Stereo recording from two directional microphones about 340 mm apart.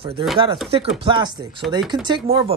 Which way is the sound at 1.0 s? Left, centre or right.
Centre.